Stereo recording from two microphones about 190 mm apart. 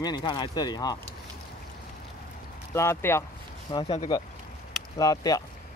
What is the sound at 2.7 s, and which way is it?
Speech, 15° left (ahead or behind).